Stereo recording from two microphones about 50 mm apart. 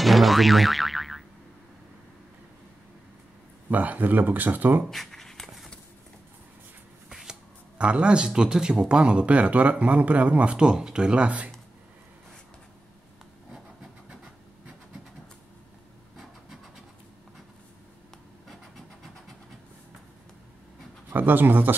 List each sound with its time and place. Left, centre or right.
0.0 s boing: centre
3.7 s speech: right
4.9 s shuffling cards: centre
7.1 s finger snapping: centre
7.7 s speech: right
18.5 s vehicle: centre
21.1 s speech: right